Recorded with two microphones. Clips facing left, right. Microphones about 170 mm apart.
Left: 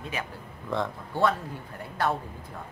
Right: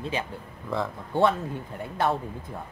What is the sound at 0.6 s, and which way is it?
Speech, centre (ahead or behind).